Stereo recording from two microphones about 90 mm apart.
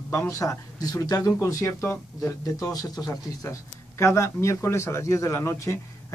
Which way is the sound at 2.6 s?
45° left (ahead or behind).